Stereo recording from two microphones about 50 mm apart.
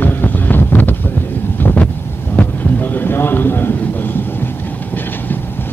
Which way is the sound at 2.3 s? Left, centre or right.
Left.